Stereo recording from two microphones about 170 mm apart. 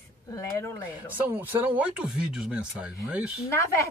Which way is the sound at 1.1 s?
10° right (ahead or behind).